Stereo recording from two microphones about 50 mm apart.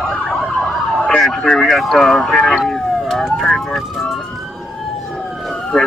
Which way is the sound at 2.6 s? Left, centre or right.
Centre.